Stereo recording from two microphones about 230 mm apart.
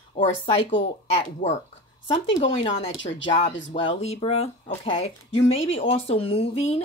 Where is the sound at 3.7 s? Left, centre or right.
Left.